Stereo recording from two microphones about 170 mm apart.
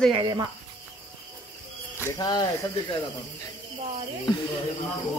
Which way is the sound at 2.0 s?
15° left (ahead or behind).